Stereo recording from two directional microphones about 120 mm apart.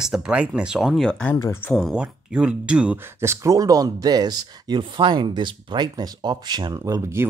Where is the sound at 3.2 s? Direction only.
25° right (ahead or behind).